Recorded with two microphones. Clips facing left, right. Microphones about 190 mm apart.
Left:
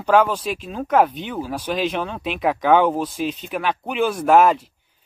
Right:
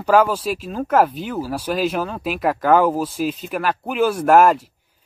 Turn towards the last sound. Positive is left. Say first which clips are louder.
# right 1 dB
turn(degrees=-10)  # may be behind; listen again after turning